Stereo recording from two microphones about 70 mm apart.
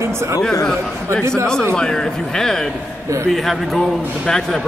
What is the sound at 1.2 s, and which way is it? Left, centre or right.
Speech, right.